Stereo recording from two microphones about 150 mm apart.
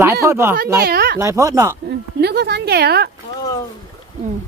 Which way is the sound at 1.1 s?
20° right (ahead or behind).